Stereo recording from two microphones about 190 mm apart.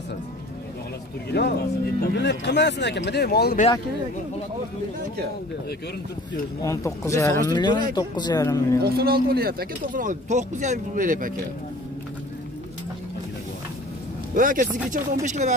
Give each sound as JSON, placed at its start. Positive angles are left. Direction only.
{"t": 1.3, "sound": "speech", "side_deg": 55}
{"t": 6.6, "sound": "speech", "side_deg": 15}
{"t": 8.7, "sound": "speech", "side_deg": -55}
{"t": 14.3, "sound": "speech", "side_deg": -45}